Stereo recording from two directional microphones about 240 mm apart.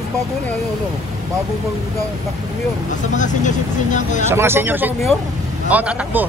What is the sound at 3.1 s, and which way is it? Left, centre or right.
Speech, left.